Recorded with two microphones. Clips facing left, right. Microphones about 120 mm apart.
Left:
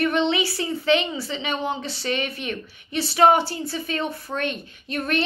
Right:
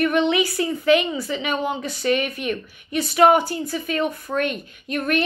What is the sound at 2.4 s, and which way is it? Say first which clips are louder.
Speech: right 4 dB; 45° right (ahead or behind).